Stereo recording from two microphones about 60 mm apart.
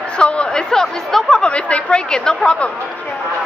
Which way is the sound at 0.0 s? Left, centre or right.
Centre.